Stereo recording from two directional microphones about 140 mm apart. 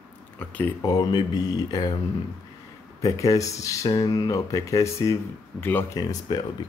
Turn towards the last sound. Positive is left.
turn(degrees=25)  # may be behind; listen again after turning